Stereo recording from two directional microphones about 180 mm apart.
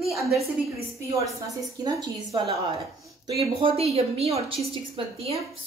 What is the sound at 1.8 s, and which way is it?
Speech, 20° right (ahead or behind).